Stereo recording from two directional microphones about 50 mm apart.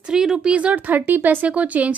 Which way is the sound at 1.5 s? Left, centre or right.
Right.